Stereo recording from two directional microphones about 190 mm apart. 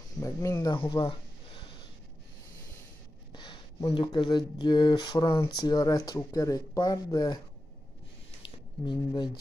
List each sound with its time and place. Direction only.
0.2 s speech: 15° left (ahead or behind)
3.3 s speech: 25° left (ahead or behind)
8.4 s a sound: 25° left (ahead or behind)